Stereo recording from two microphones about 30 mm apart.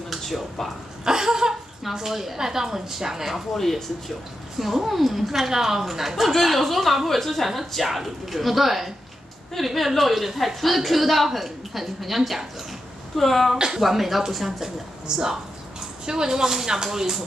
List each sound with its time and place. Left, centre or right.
0.2 s speech: centre
1.0 s a sound: centre
2.0 s speech: centre
2.3 s speech: centre
3.5 s speech: centre
4.6 s a man's voice: centre
13.1 s a man's voice: centre
13.7 s speech: centre
15.0 s speech: right